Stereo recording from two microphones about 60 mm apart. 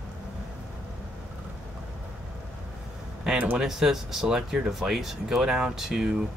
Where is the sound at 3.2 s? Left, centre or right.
Right.